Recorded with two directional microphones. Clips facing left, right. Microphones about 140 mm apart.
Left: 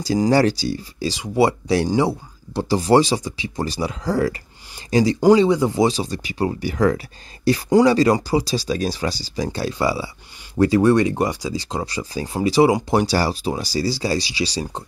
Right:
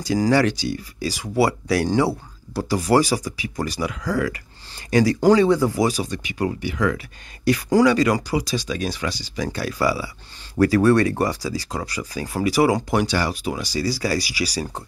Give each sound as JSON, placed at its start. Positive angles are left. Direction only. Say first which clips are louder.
{"t": 0.2, "sound": "speech", "louder": "left 2 dB", "side_deg": 30}
{"t": 13.0, "sound": "speech", "louder": "left 3 dB", "side_deg": 35}